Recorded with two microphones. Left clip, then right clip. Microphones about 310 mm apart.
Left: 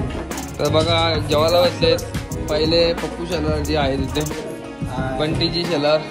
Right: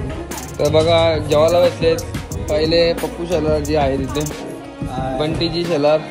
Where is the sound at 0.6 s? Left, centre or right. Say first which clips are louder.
Right 4 dB; centre.